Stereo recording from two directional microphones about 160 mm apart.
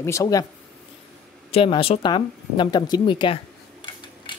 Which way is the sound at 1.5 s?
35° left (ahead or behind).